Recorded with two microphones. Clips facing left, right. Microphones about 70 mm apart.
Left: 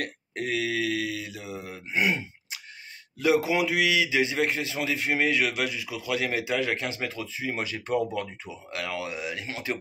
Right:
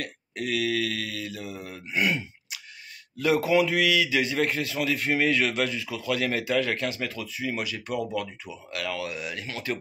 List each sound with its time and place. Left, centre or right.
0.3 s mantra: left
3.2 s a man's voice: centre